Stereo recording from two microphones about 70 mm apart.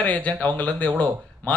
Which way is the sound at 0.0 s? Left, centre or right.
Centre.